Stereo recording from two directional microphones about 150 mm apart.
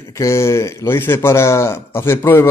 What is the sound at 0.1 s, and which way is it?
Speech, 20° left (ahead or behind).